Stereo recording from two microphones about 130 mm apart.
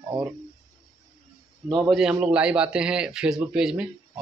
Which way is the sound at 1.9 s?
5° right (ahead or behind).